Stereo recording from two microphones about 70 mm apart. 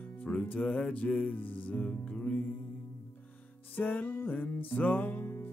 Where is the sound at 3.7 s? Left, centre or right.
Left.